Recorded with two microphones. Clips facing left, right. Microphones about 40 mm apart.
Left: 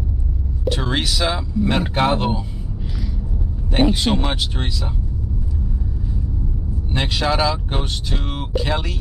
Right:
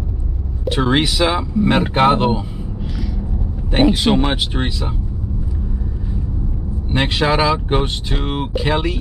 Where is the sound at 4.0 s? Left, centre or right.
Right.